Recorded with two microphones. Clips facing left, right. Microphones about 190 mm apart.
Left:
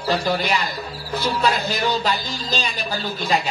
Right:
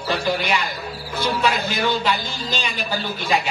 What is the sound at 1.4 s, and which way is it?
Speech, 35° left (ahead or behind).